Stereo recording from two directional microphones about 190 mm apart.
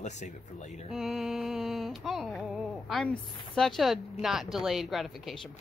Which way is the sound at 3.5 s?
5° left (ahead or behind).